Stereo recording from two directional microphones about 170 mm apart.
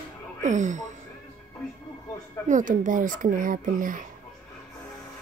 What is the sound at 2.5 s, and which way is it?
Speech, 50° right (ahead or behind).